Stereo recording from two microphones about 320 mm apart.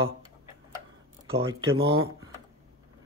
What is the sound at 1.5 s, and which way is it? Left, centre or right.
Speech, right.